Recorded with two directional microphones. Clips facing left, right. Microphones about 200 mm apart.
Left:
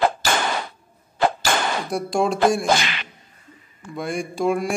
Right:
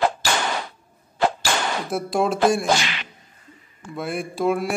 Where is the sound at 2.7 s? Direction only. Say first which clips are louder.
Left 1 dB; 55° left (ahead or behind).